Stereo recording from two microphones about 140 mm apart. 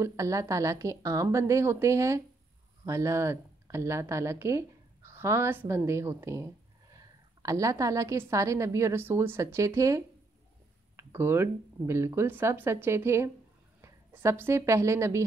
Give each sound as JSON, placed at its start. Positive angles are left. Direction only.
{"t": 0.0, "sound": "a woman's voice", "side_deg": -20}